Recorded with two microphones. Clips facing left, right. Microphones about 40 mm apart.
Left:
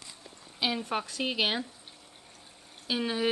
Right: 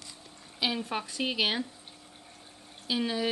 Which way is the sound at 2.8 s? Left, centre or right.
Centre.